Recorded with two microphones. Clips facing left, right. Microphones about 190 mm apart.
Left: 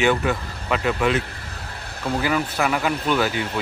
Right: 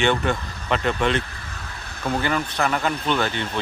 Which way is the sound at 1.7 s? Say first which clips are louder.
Even; 35° left (ahead or behind).